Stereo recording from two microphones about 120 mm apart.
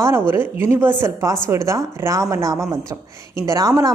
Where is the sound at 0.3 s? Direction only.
20° right (ahead or behind).